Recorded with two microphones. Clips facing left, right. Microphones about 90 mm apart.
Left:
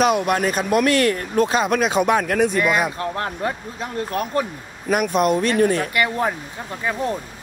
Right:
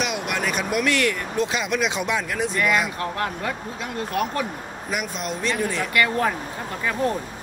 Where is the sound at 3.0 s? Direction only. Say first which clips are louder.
Left 2 dB; 30° left (ahead or behind).